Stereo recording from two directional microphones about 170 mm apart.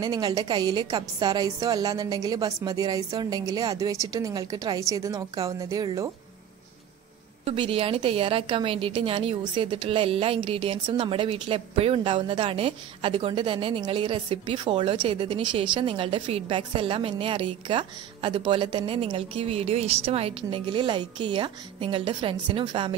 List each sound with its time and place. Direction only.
0.0 s a woman's voice: 25° right (ahead or behind)
7.4 s a woman's voice: 30° right (ahead or behind)